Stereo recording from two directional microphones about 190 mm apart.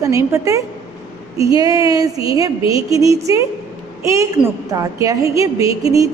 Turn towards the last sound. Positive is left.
turn(degrees=-20)  # may be behind; listen again after turning